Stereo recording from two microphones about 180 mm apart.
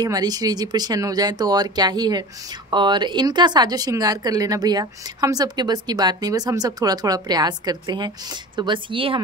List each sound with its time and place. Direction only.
0.0 s speech: 20° right (ahead or behind)